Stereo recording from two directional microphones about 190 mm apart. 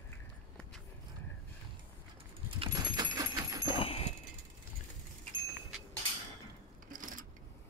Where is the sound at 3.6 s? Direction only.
30° left (ahead or behind).